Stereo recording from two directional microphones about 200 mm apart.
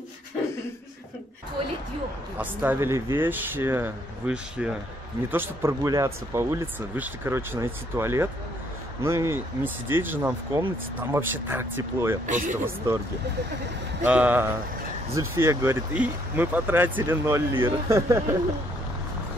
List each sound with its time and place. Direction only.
2.3 s speech: 10° right (ahead or behind)
12.3 s speech: 40° right (ahead or behind)
12.6 s speech: 15° right (ahead or behind)
14.0 s speech: 10° right (ahead or behind)